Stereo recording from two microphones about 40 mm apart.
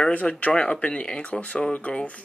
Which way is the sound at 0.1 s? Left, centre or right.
Left.